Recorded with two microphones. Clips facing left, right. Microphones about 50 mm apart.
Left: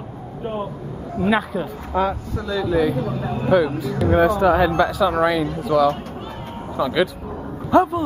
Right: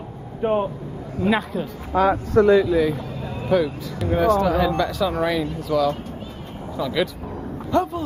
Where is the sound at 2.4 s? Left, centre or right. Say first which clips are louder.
Right 14 dB; right.